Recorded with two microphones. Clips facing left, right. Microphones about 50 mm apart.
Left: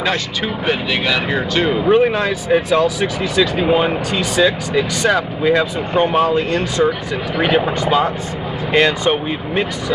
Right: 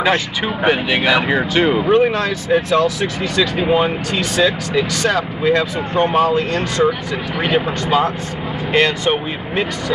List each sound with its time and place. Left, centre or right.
0.1 s speech: centre
1.9 s speech: centre
8.7 s speech: centre